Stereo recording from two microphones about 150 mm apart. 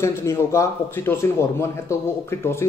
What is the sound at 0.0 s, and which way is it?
A man's voice, 20° left (ahead or behind).